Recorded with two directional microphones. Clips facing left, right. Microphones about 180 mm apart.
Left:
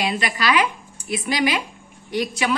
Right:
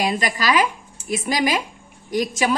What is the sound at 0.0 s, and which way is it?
A woman's voice, 40° right (ahead or behind).